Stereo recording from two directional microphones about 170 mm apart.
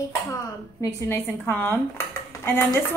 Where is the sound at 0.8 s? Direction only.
15° left (ahead or behind).